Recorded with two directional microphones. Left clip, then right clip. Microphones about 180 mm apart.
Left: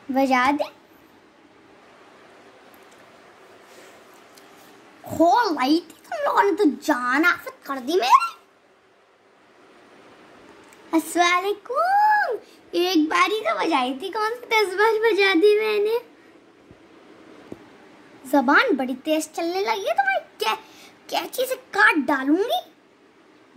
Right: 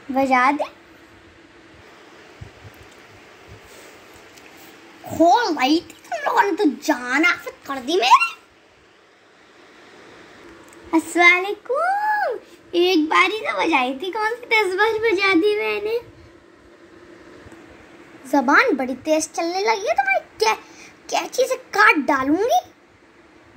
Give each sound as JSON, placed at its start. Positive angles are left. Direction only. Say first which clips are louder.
{"t": 0.1, "sound": "a child's voice", "louder": "right 2 dB", "side_deg": 20}
{"t": 5.1, "sound": "a woman's voice", "louder": "right 2 dB", "side_deg": 15}
{"t": 10.9, "sound": "a child's voice", "louder": "right 5 dB", "side_deg": 20}
{"t": 18.3, "sound": "a woman's voice", "louder": "right 2 dB", "side_deg": 15}